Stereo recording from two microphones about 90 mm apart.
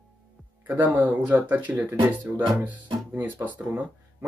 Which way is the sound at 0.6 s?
20° right (ahead or behind).